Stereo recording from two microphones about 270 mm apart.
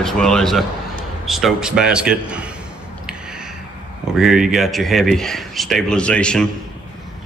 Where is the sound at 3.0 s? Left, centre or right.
Centre.